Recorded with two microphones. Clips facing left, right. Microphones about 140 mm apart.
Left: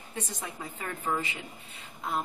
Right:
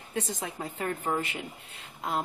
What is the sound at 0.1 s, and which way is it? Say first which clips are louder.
Speech: right 5 dB; 75° right (ahead or behind).